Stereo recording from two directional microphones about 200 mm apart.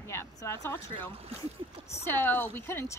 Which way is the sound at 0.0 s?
15° left (ahead or behind).